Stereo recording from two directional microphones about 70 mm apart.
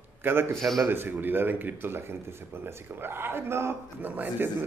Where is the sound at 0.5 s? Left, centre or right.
Centre.